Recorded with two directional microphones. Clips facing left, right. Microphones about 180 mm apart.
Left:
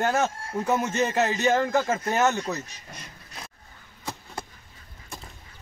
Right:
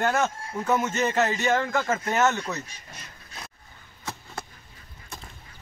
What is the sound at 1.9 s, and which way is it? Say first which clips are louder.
Speech: even; 15° left (ahead or behind).